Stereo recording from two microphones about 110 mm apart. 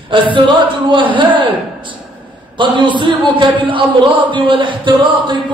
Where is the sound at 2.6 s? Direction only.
45° right (ahead or behind).